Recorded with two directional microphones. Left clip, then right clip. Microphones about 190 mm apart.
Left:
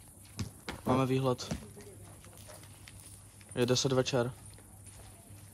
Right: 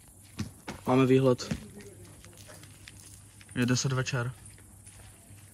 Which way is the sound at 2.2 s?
30° left (ahead or behind).